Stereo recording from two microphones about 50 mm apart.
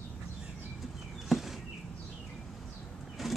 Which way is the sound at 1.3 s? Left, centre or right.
Centre.